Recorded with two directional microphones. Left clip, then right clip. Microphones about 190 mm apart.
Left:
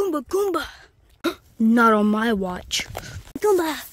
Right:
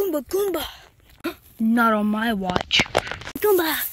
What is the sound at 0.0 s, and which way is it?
Speech, 20° left (ahead or behind).